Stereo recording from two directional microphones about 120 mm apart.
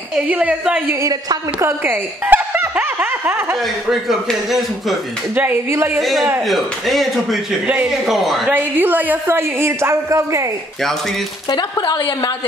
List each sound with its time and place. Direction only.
0.3 s a woman's voice: 10° right (ahead or behind)
1.0 s speech: 30° right (ahead or behind)
1.9 s a sound: 15° right (ahead or behind)
3.6 s a man's voice: centre (ahead or behind)
5.3 s speech: 20° right (ahead or behind)
5.9 s a man's voice: centre (ahead or behind)
8.5 s speech: 15° right (ahead or behind)
11.5 s speech: 35° left (ahead or behind)